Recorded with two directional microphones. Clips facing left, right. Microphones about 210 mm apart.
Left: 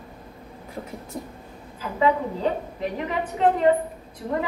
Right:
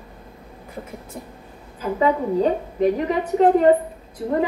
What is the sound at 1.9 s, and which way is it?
Speech, 40° right (ahead or behind).